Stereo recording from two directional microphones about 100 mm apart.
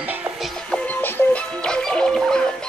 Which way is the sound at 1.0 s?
20° left (ahead or behind).